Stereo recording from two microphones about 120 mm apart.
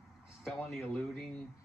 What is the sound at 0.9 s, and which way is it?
Speech, 5° left (ahead or behind).